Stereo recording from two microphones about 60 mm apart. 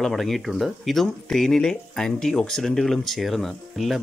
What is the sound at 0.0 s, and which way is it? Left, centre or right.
Speech, centre.